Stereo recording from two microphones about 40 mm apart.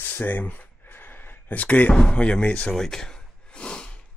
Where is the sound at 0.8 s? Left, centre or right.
Left.